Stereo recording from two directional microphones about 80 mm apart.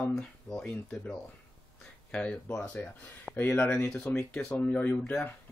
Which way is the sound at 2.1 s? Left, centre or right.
Centre.